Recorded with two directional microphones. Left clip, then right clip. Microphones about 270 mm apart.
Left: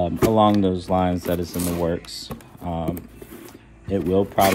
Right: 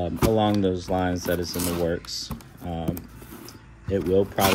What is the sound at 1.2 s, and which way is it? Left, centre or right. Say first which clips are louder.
Speech: left 1 dB; left.